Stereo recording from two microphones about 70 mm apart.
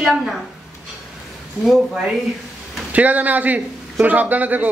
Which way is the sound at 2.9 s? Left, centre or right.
Right.